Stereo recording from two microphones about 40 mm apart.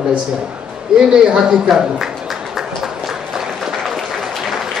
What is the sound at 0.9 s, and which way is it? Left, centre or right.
Speech, centre.